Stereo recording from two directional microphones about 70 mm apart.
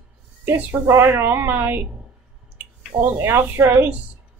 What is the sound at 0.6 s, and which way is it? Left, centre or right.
Speech, right.